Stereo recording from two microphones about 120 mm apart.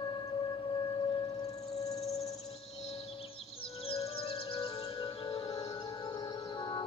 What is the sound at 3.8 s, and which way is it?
Music, 55° left (ahead or behind).